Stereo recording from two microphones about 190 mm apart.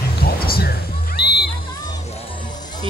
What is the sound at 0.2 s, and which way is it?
Music, 55° left (ahead or behind).